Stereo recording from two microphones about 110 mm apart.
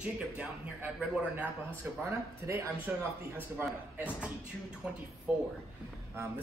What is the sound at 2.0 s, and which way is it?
Speech, 25° right (ahead or behind).